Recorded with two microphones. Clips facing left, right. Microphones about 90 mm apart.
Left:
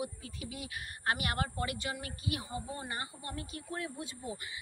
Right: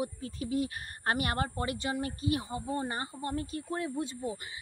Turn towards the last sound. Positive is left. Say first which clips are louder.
# right 7 dB
turn(degrees=-30)  # may be behind; listen again after turning